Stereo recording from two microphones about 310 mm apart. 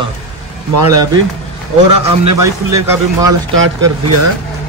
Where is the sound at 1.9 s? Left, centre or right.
Right.